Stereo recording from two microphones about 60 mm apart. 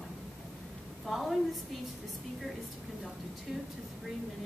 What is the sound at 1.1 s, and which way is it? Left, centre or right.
Speech, centre.